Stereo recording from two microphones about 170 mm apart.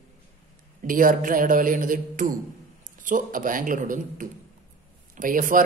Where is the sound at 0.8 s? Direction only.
55° right (ahead or behind).